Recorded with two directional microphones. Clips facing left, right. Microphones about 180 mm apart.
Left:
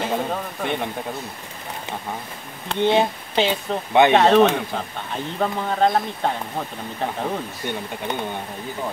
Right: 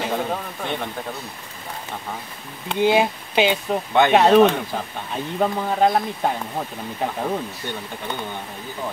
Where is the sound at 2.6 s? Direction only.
5° right (ahead or behind).